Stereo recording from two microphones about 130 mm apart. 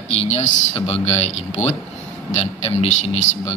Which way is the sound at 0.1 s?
60° left (ahead or behind).